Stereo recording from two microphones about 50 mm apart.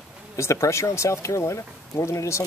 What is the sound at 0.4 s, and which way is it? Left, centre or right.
Speech, left.